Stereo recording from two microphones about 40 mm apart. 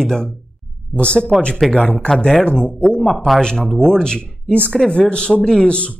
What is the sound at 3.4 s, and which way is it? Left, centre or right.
Speech, centre.